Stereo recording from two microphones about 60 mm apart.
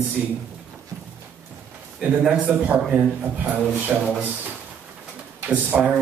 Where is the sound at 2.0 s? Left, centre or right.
Centre.